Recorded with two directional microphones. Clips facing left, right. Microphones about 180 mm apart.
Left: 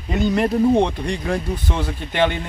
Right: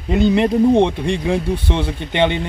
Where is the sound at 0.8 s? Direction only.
10° right (ahead or behind).